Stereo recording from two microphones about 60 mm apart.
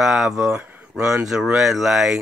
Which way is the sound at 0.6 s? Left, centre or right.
Right.